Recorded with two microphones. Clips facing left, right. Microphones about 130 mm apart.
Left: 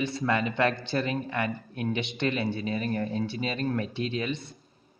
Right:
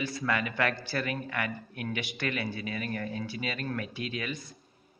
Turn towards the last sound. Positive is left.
turn(degrees=25)  # may be behind; listen again after turning